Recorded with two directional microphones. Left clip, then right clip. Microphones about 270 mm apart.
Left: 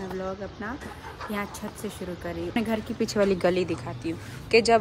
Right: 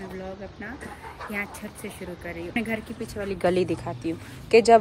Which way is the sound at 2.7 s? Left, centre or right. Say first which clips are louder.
Left 3 dB; left.